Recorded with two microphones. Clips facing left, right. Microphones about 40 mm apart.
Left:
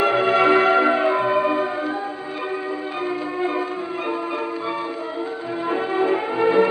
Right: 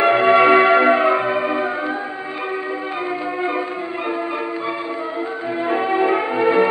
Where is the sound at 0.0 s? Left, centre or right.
Right.